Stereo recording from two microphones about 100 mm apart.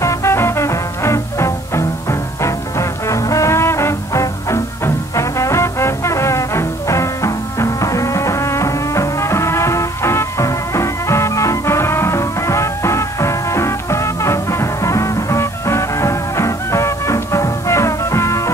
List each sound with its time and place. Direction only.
0.0 s music: 30° left (ahead or behind)